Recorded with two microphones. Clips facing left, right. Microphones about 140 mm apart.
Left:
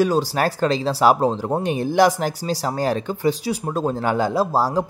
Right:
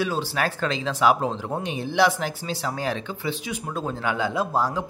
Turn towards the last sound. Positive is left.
turn(degrees=35)  # may be behind; listen again after turning